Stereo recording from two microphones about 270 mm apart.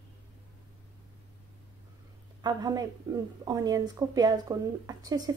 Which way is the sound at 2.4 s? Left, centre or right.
Centre.